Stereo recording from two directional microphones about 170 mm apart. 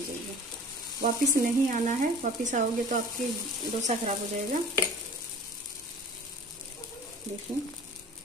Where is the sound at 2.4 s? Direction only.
50° right (ahead or behind).